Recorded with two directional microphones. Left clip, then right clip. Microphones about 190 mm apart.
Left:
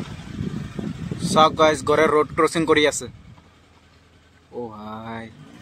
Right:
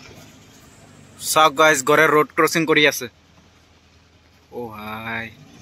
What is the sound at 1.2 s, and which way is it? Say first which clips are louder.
Speech: right 1 dB; centre (ahead or behind).